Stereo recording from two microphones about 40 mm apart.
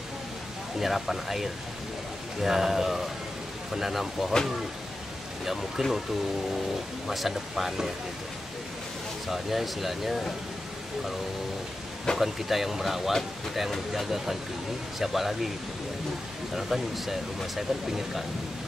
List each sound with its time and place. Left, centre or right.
0.7 s speech: centre
5.4 s speech: centre
7.1 s speech: centre
9.3 s speech: centre
12.2 s speech: centre
16.5 s speech: centre